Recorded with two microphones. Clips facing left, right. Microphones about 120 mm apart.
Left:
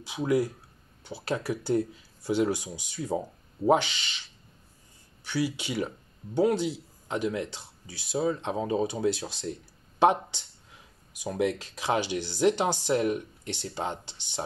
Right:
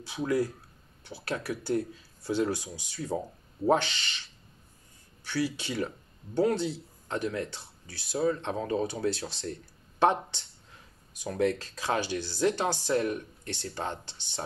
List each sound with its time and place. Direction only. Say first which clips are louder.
0.0 s speech: left 2 dB; 15° left (ahead or behind)
5.2 s speech: left 1 dB; 15° left (ahead or behind)